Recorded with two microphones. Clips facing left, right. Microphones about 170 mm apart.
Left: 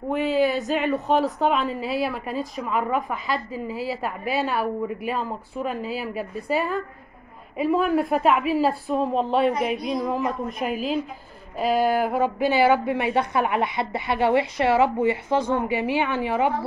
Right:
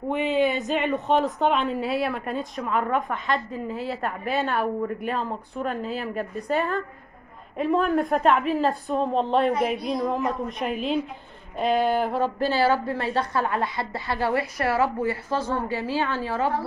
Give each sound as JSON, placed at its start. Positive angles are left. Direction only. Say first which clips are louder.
{"t": 0.1, "sound": "a woman's voice", "louder": "left 1 dB", "side_deg": 0}